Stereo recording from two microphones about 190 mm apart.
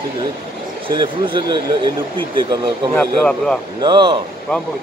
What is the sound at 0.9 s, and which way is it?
Speech, 25° right (ahead or behind).